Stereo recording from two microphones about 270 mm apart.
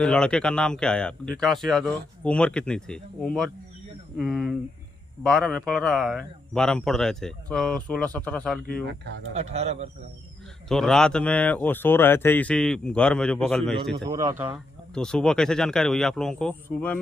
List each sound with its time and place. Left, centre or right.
0.0 s speech: centre
9.3 s a man's voice: right
10.7 s speech: centre
13.9 s speech: centre
15.0 s speech: centre